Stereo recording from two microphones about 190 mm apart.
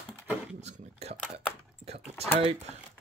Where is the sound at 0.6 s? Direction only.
35° right (ahead or behind).